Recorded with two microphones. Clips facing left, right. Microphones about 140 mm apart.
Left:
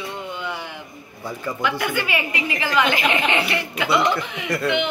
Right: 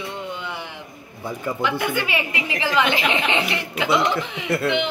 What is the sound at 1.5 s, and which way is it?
Speech, 25° right (ahead or behind).